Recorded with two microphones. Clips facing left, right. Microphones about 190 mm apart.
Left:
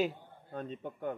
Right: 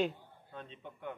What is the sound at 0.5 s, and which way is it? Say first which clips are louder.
Speech: left 8 dB; 45° left (ahead or behind).